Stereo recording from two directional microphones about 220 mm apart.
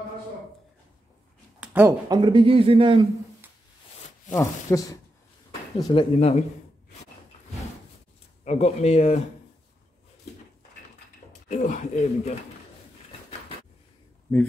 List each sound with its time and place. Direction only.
1.6 s speech: 10° right (ahead or behind)
4.3 s speech: 15° left (ahead or behind)
6.1 s speech: 30° left (ahead or behind)
8.5 s speech: 30° left (ahead or behind)
11.4 s speech: 35° left (ahead or behind)